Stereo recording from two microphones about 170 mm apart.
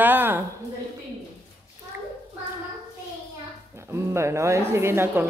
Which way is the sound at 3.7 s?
15° right (ahead or behind).